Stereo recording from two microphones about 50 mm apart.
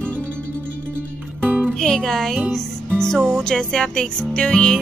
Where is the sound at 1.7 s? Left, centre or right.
Centre.